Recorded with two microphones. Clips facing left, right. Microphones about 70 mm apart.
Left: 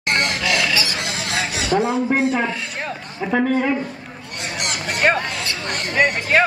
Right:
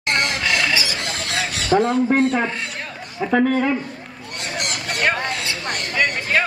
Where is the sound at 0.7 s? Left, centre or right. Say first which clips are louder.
Even; right.